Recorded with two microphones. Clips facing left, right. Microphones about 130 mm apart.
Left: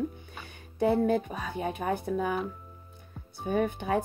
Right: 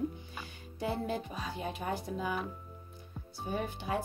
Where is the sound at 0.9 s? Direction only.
55° left (ahead or behind).